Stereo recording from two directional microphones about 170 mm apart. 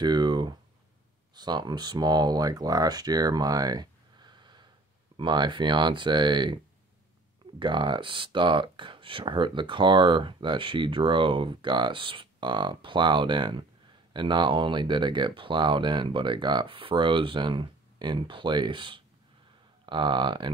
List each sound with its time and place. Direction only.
0.0 s speech: 25° right (ahead or behind)